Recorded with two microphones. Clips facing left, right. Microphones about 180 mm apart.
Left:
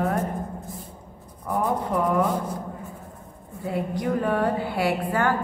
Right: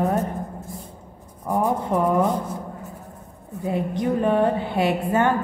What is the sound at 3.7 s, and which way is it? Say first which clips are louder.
A woman's voice: right 3 dB; 20° right (ahead or behind).